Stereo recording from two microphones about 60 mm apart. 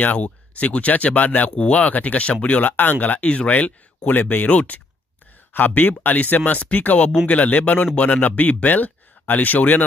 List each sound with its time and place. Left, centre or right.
0.0 s speech: left